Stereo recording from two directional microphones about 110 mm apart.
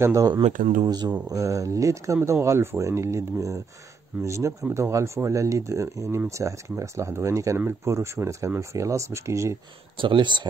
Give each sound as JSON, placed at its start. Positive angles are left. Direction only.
{"t": 0.0, "sound": "speech", "side_deg": -30}
{"t": 0.8, "sound": "speech", "side_deg": -40}
{"t": 9.9, "sound": "speech", "side_deg": -50}